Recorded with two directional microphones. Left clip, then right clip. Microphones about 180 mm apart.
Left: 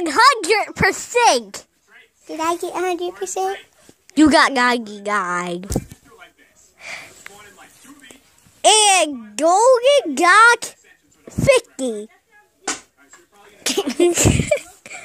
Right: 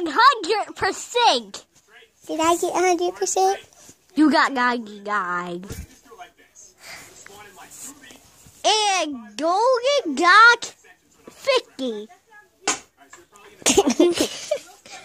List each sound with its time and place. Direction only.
0.0 s a child's voice: 20° left (ahead or behind)
2.2 s a child's voice: 30° right (ahead or behind)
4.1 s a child's voice: 25° left (ahead or behind)
6.8 s a sound: 25° left (ahead or behind)
8.5 s a child's voice: 25° left (ahead or behind)
13.6 s a sound: 30° right (ahead or behind)
13.9 s speech: 20° left (ahead or behind)